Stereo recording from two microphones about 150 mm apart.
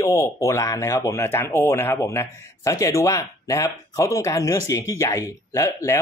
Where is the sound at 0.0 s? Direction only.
20° left (ahead or behind).